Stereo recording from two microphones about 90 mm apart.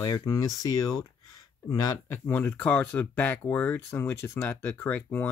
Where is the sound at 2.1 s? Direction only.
25° left (ahead or behind).